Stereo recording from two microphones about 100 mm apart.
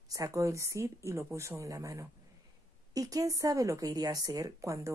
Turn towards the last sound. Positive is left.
turn(degrees=-35)  # may be behind; listen again after turning